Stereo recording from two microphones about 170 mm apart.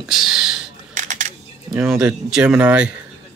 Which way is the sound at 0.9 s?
50° right (ahead or behind).